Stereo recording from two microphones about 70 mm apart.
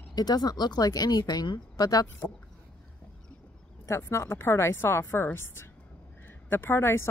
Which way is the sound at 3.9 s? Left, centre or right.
Left.